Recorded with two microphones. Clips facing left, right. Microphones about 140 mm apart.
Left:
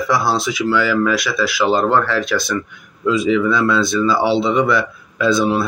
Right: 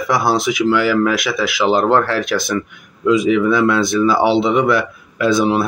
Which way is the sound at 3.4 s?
15° right (ahead or behind).